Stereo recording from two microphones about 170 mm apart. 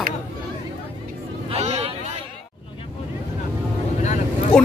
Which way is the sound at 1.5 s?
40° right (ahead or behind).